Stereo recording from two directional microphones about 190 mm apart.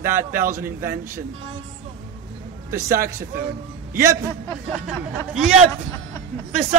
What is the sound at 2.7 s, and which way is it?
Speech, 15° right (ahead or behind).